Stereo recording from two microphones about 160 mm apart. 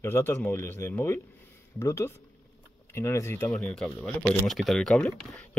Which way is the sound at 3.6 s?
5° left (ahead or behind).